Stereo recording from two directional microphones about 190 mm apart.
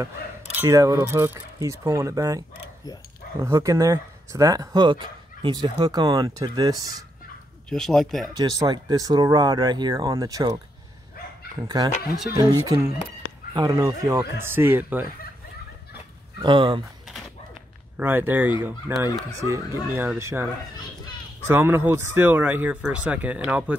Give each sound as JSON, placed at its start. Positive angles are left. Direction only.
{"t": 0.6, "sound": "speech", "side_deg": -15}
{"t": 7.7, "sound": "speech", "side_deg": 0}
{"t": 8.3, "sound": "speech", "side_deg": -20}
{"t": 11.6, "sound": "speech", "side_deg": -20}
{"t": 11.9, "sound": "speech", "side_deg": 55}
{"t": 12.4, "sound": "speech", "side_deg": -20}
{"t": 16.4, "sound": "speech", "side_deg": -25}
{"t": 17.9, "sound": "speech", "side_deg": -10}
{"t": 21.5, "sound": "speech", "side_deg": -10}